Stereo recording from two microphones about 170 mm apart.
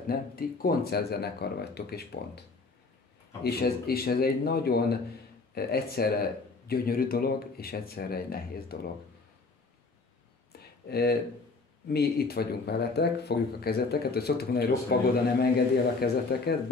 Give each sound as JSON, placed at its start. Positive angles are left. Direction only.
{"t": 0.0, "sound": "speech", "side_deg": 60}
{"t": 3.4, "sound": "speech", "side_deg": 65}
{"t": 10.5, "sound": "a sound", "side_deg": 65}
{"t": 10.9, "sound": "speech", "side_deg": 65}